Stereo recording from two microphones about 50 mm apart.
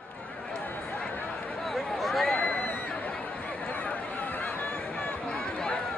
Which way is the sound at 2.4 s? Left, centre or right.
Left.